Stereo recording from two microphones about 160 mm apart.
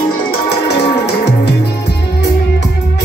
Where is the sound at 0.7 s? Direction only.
35° left (ahead or behind).